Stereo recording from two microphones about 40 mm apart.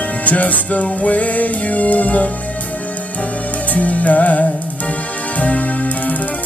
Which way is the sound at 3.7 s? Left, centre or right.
Left.